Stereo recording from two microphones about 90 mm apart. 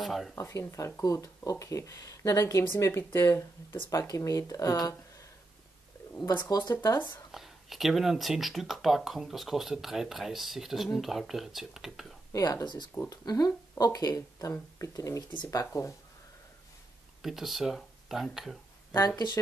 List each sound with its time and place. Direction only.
0.0 s speech: centre (ahead or behind)
0.4 s speech: 35° left (ahead or behind)
6.7 s speech: 35° left (ahead or behind)
7.2 s speech: centre (ahead or behind)
12.3 s speech: 40° left (ahead or behind)
17.2 s speech: 5° right (ahead or behind)
18.9 s speech: 50° left (ahead or behind)